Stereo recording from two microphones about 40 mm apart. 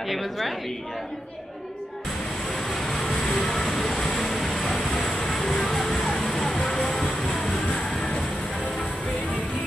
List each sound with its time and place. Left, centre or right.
0.0 s a woman's voice: centre
2.5 s vehicle: centre
6.8 s train: centre
7.7 s train: centre